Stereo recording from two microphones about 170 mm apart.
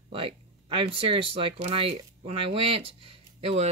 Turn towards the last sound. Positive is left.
turn(degrees=-35)  # may be behind; listen again after turning